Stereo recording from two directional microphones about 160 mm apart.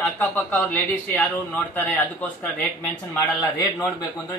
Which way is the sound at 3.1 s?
20° left (ahead or behind).